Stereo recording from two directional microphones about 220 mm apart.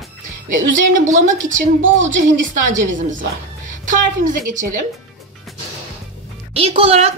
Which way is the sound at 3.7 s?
35° right (ahead or behind).